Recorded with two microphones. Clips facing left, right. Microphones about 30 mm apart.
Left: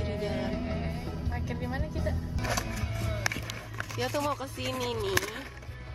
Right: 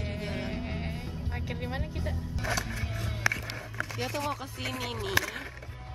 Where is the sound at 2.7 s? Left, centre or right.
Right.